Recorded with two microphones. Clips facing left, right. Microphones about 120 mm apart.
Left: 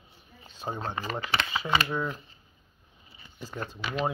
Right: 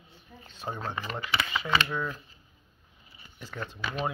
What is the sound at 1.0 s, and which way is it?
Speech, 30° left (ahead or behind).